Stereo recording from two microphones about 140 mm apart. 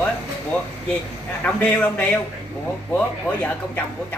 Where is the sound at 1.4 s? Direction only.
10° left (ahead or behind).